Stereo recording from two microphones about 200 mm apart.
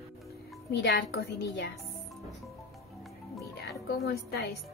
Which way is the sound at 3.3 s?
Centre (ahead or behind).